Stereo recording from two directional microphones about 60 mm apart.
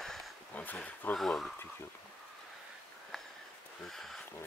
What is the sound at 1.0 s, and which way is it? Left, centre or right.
Speech, left.